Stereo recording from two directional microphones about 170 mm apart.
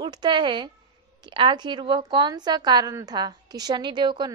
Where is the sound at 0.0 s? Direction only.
25° right (ahead or behind).